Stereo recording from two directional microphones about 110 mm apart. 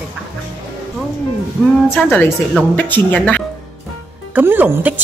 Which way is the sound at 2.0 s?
15° left (ahead or behind).